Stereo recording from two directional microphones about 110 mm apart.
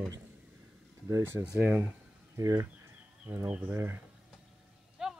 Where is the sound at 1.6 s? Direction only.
20° right (ahead or behind).